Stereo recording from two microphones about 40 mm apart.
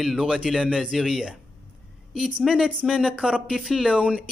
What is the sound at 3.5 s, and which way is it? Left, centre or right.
Speech, centre.